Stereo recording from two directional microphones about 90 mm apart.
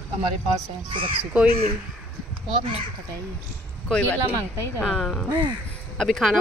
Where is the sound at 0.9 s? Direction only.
90° right.